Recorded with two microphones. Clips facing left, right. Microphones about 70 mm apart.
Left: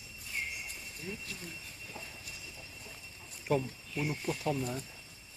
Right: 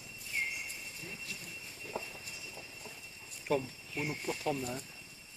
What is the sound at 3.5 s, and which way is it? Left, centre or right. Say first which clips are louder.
Speech: left 1 dB; centre.